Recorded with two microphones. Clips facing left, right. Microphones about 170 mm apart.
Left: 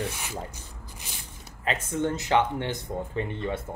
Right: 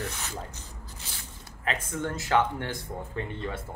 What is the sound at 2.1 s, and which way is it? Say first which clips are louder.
Speech: even; 20° left (ahead or behind).